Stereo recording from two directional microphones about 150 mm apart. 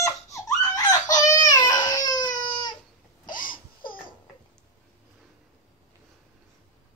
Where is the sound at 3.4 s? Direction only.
30° left (ahead or behind).